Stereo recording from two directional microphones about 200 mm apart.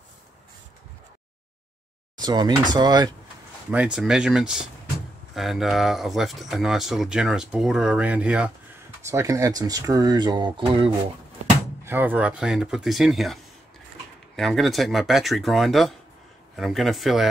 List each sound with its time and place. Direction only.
2.1 s speech: 20° right (ahead or behind)
3.7 s speech: 5° right (ahead or behind); by 10.9 s 25° right (ahead or behind)
11.8 s speech: 10° right (ahead or behind)